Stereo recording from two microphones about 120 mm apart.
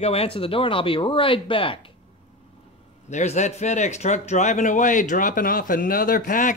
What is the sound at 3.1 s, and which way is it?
Speech, 80° left.